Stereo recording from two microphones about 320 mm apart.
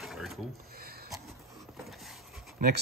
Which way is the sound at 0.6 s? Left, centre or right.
Right.